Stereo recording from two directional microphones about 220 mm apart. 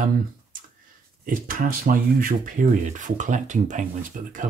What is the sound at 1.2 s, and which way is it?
Speech, 40° right (ahead or behind).